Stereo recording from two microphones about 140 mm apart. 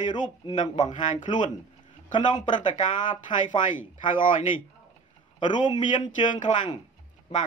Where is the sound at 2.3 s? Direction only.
60° left (ahead or behind).